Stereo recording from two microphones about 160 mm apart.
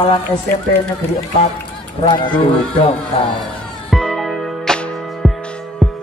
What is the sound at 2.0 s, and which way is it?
Goose, 30° left (ahead or behind).